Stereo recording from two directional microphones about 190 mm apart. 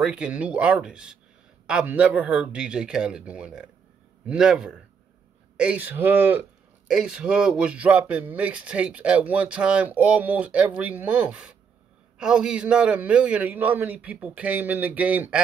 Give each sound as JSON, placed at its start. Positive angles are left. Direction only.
{"t": 0.0, "sound": "a man's voice", "side_deg": -5}